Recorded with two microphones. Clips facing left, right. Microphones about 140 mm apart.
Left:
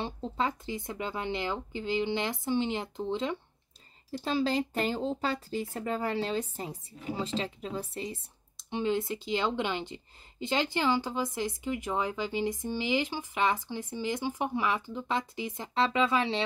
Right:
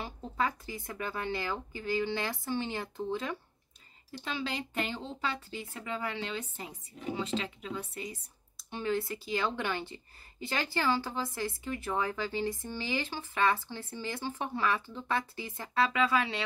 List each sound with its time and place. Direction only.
0.0 s speech: 25° left (ahead or behind)
4.2 s speech: 35° left (ahead or behind)